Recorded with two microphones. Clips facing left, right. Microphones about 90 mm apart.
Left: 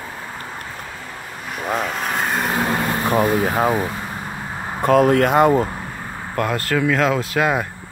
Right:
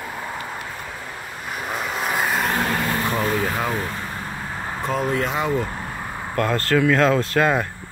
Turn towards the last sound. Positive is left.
turn(degrees=10)  # may be behind; listen again after turning